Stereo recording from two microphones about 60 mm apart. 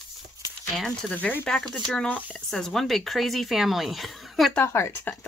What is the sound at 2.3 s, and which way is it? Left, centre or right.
Speech, centre.